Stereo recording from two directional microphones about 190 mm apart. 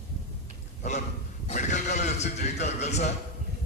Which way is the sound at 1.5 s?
40° left (ahead or behind).